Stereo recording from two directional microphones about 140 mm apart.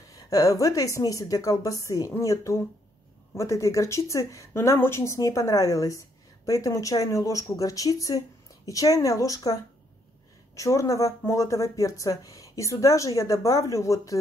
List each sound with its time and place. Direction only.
0.1 s speech: 25° left (ahead or behind)